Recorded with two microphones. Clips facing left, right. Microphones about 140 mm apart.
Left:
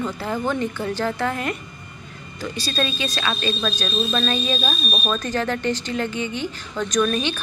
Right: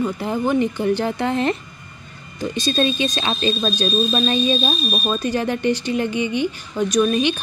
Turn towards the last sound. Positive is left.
turn(degrees=-15)  # may be behind; listen again after turning